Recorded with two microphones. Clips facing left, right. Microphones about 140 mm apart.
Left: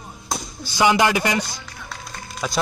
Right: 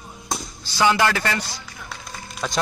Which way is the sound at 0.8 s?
15° left (ahead or behind).